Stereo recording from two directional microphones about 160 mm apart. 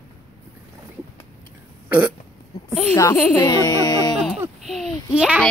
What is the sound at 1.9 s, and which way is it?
Burping, 10° right (ahead or behind).